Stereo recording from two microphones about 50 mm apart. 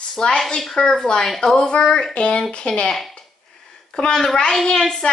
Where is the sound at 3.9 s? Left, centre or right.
Centre.